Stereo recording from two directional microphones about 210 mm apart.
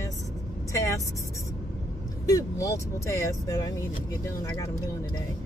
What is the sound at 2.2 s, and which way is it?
Speech, 15° left (ahead or behind).